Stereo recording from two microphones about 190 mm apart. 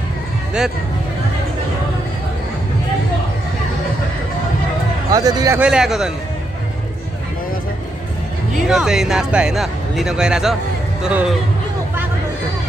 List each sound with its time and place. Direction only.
5.1 s speech: 20° right (ahead or behind)
5.6 s speech: 5° right (ahead or behind)
8.6 s speech: centre (ahead or behind)